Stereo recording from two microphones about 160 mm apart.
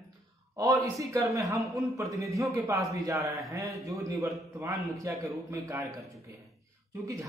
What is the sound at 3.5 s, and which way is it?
A man's voice, 20° right (ahead or behind).